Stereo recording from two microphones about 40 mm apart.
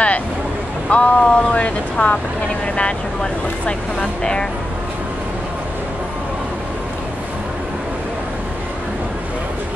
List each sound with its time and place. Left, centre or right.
0.8 s speech: left